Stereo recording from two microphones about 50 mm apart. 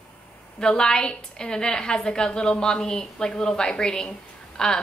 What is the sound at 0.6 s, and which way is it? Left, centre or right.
A woman's voice, centre.